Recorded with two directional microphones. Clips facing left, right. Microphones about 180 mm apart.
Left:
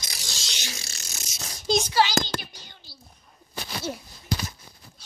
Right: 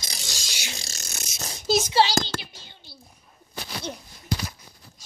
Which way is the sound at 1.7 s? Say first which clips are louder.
Right 1 dB; 5° right (ahead or behind).